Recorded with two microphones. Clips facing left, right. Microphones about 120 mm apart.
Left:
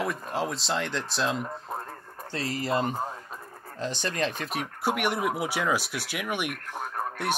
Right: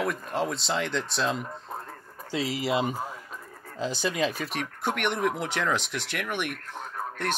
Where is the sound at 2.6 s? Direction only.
10° right (ahead or behind).